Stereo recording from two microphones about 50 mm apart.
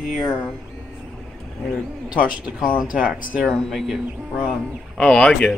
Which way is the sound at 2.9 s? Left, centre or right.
Right.